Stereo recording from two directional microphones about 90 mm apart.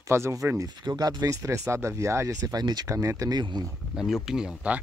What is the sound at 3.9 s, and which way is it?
Speech, 5° right (ahead or behind).